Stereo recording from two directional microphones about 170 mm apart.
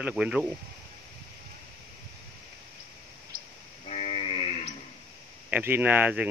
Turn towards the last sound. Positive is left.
turn(degrees=-10)  # may be behind; listen again after turning